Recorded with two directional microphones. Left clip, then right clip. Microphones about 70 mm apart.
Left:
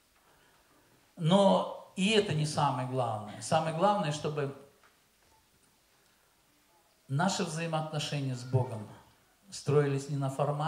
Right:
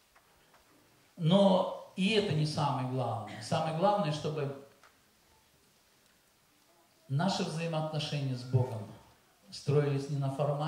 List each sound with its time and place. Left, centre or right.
1.2 s speech: left
7.1 s speech: left